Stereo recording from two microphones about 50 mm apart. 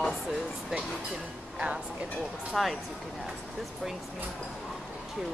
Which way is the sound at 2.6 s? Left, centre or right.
Centre.